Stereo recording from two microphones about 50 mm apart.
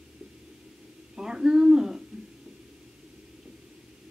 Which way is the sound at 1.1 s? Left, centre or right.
Centre.